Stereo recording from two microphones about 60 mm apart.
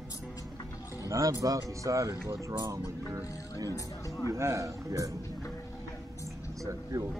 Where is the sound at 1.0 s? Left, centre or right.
Right.